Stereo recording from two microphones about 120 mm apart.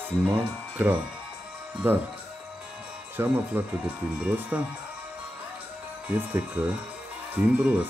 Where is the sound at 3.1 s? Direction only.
15° right (ahead or behind).